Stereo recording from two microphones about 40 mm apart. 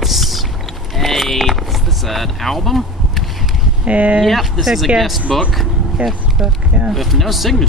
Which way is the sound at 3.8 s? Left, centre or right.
Right.